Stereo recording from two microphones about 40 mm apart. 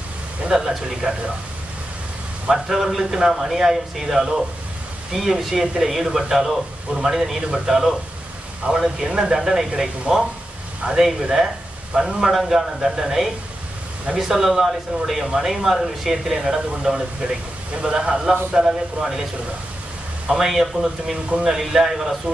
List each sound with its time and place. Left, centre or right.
0.5 s speech: centre
2.5 s speech: centre
10.8 s speech: right
11.1 s a man's voice: centre
19.0 s speech: right
20.3 s speech: centre